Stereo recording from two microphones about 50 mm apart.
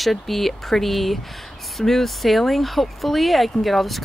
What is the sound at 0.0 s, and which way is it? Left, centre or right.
Speech, centre.